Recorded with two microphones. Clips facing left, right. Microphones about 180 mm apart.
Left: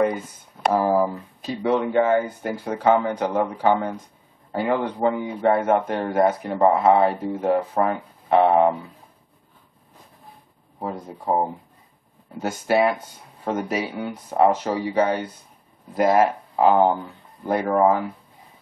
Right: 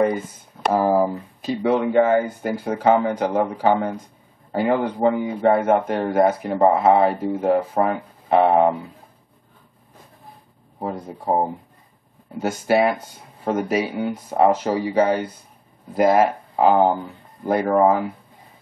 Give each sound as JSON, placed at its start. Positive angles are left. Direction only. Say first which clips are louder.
{"t": 0.0, "sound": "speech", "louder": "right 2 dB", "side_deg": 0}
{"t": 10.9, "sound": "speech", "louder": "right 2 dB", "side_deg": 0}
{"t": 11.2, "sound": "speech", "louder": "right 1 dB", "side_deg": -15}
{"t": 12.4, "sound": "speech", "louder": "right 2 dB", "side_deg": 0}